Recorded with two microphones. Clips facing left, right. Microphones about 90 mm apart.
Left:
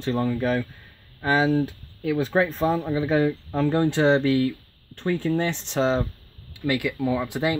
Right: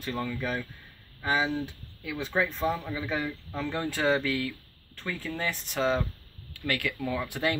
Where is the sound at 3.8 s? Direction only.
25° left (ahead or behind).